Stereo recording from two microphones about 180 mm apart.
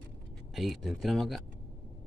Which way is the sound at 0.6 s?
Centre (ahead or behind).